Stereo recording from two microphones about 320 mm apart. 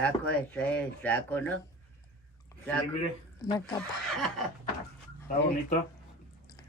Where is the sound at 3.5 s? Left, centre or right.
Centre.